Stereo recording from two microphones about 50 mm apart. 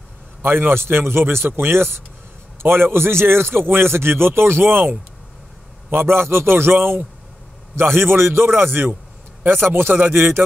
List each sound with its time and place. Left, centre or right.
0.4 s a man's voice: right